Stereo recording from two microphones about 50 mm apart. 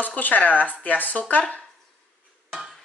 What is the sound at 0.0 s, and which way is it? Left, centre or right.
Speech, left.